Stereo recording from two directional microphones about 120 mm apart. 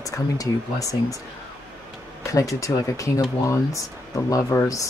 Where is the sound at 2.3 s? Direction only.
25° left (ahead or behind).